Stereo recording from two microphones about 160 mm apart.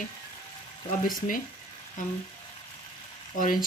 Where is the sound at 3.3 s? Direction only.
60° left (ahead or behind).